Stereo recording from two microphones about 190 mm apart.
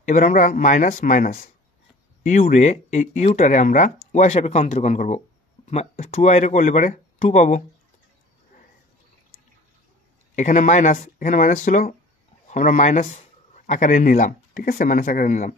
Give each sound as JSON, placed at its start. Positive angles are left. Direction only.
{"t": 0.0, "sound": "speech", "side_deg": 45}
{"t": 10.3, "sound": "speech", "side_deg": 40}